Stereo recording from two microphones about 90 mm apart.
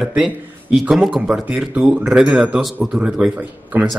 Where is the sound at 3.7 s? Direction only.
20° right (ahead or behind).